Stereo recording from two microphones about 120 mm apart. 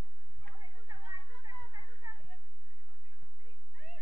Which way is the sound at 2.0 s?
30° right (ahead or behind).